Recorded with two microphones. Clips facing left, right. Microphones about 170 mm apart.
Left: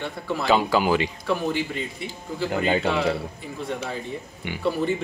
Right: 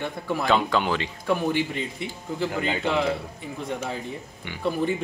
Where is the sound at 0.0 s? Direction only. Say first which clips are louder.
Even; 15° right (ahead or behind).